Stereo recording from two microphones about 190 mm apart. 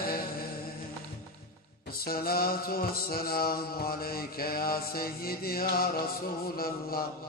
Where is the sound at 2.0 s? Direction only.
50° left (ahead or behind).